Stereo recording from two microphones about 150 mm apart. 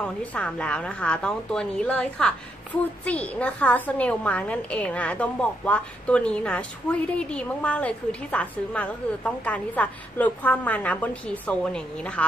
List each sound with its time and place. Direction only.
0.0 s a woman's voice: 10° left (ahead or behind)